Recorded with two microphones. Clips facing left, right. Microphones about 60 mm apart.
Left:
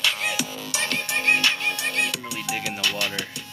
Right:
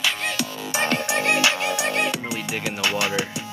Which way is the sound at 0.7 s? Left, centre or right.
Right.